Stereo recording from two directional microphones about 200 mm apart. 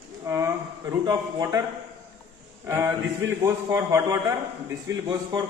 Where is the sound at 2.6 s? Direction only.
15° right (ahead or behind).